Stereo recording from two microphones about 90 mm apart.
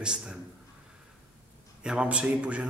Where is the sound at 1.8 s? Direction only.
10° right (ahead or behind).